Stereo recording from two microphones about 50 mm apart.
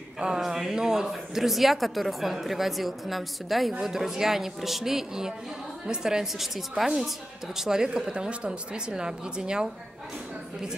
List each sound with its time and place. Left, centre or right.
0.4 s speech: centre